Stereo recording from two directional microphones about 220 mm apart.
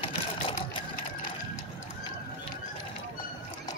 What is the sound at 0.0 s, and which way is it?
Sewing machine, 25° left (ahead or behind).